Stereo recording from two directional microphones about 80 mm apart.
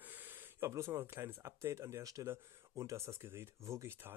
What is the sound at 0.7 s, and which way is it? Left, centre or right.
Speech, right.